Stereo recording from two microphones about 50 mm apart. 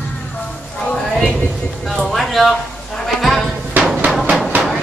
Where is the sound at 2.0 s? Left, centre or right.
Centre.